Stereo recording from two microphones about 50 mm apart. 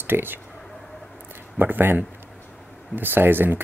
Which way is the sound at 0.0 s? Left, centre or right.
Right.